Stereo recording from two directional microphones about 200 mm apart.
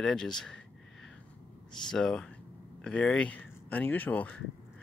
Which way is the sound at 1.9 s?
5° left (ahead or behind).